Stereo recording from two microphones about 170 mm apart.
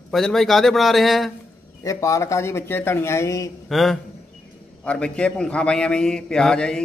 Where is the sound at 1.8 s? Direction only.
20° left (ahead or behind).